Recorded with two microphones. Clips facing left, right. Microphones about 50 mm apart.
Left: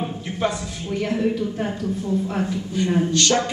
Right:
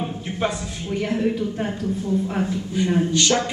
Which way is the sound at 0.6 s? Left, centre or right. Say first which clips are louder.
Even; centre.